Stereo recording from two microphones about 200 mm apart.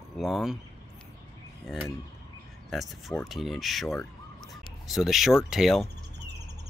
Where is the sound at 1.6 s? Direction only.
Centre (ahead or behind).